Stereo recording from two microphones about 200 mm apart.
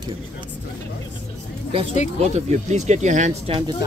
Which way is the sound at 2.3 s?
35° right (ahead or behind).